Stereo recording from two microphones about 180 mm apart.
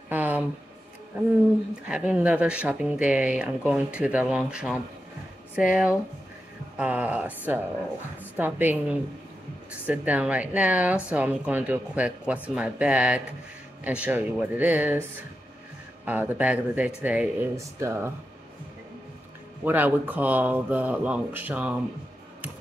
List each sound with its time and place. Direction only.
0.1 s a sound: 10° right (ahead or behind)
1.9 s speech: 5° right (ahead or behind)
16.1 s speech: 10° right (ahead or behind)
19.6 s speech: 10° right (ahead or behind)